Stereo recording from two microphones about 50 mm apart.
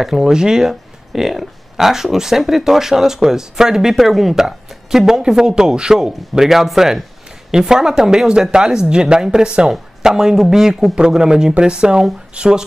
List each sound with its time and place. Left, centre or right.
0.0 s speech: centre